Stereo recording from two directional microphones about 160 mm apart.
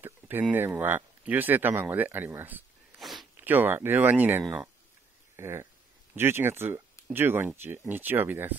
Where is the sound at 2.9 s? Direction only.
Centre (ahead or behind).